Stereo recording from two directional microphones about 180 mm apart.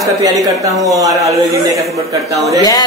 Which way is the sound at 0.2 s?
20° right (ahead or behind).